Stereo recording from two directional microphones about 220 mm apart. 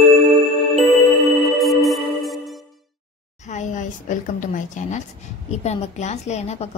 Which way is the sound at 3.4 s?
35° left (ahead or behind).